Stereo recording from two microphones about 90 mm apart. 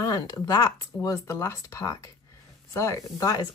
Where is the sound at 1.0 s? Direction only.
35° left (ahead or behind).